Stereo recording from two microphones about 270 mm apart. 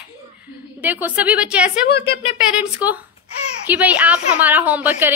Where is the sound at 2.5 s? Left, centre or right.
Centre.